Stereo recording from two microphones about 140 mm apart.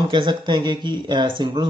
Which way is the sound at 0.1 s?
35° right (ahead or behind).